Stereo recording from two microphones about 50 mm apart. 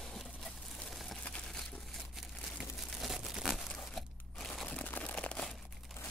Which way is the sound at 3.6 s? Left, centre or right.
Centre.